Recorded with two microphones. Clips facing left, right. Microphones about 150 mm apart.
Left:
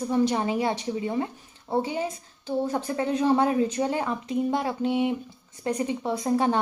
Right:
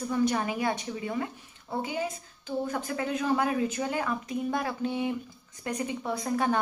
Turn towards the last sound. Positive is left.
turn(degrees=25)  # may be behind; listen again after turning